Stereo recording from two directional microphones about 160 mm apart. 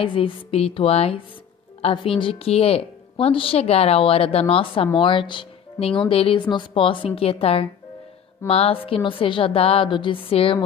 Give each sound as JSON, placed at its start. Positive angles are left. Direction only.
{"t": 0.0, "sound": "a woman's voice", "side_deg": 35}